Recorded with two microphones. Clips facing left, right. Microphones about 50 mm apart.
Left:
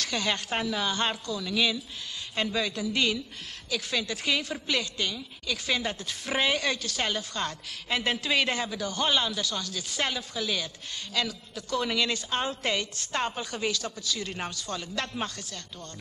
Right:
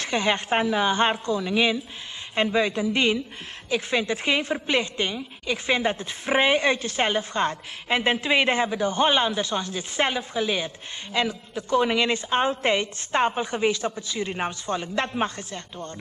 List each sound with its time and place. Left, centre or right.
0.0 s a woman's voice: right